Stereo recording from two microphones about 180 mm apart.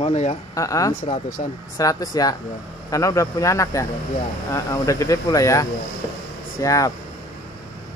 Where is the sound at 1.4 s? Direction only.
40° left (ahead or behind).